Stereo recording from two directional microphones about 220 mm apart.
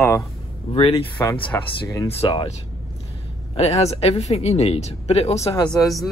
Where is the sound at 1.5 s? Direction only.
10° left (ahead or behind).